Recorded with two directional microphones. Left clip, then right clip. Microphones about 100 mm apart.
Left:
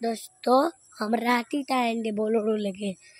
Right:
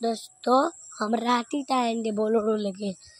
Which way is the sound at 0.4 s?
25° left (ahead or behind).